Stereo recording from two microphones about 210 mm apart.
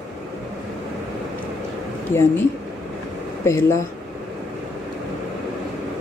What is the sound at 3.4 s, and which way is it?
Speech, 15° left (ahead or behind).